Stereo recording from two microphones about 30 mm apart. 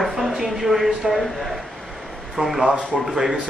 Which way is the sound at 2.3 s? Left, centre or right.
Centre.